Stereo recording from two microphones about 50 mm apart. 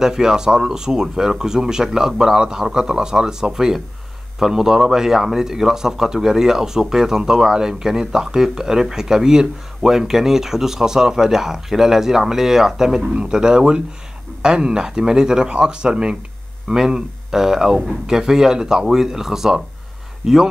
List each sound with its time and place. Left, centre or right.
0.0 s speech: centre